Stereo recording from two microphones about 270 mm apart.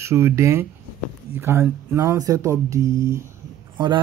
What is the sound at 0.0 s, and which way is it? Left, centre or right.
Speech, centre.